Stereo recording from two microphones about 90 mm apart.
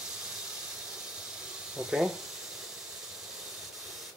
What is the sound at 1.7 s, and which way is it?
Speech, 5° right (ahead or behind).